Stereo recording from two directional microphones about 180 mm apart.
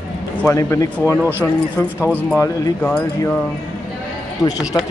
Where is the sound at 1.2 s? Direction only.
10° right (ahead or behind).